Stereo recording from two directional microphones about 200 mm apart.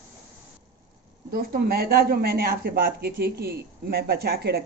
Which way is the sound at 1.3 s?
50° right (ahead or behind).